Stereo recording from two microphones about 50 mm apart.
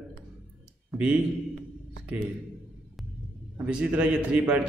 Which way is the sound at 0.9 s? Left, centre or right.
Right.